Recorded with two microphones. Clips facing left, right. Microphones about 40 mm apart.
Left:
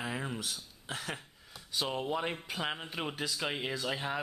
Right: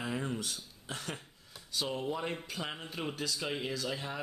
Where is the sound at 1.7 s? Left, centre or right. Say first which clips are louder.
Left 2 dB; centre.